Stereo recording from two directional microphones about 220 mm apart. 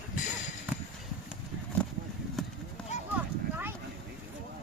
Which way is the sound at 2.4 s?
Centre (ahead or behind).